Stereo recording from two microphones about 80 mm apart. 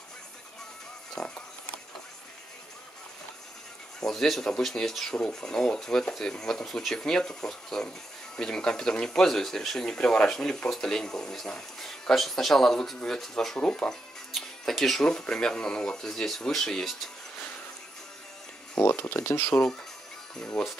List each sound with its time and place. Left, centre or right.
1.1 s speech: centre
4.0 s speech: centre
18.8 s speech: left